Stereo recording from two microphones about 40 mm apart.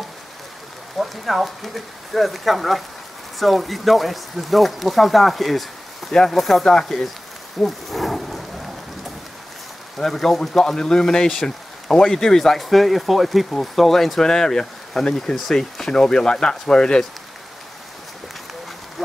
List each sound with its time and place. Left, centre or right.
0.9 s speech: centre
7.6 s a sound: centre
9.9 s speech: centre
10.6 s speech: centre